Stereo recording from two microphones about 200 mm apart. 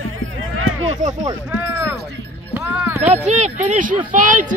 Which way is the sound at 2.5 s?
10° right (ahead or behind).